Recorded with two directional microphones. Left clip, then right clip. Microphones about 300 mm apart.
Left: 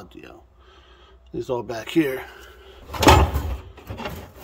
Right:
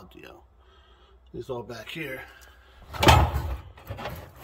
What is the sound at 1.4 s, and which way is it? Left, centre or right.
Speech, centre.